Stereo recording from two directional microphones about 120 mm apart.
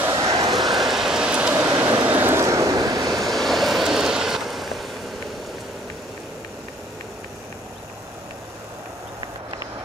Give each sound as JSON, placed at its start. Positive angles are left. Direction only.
{"t": 0.1, "sound": "a sound", "side_deg": -30}
{"t": 0.7, "sound": "rain", "side_deg": -5}
{"t": 1.7, "sound": "vehicle", "side_deg": -15}
{"t": 3.3, "sound": "vehicle", "side_deg": 0}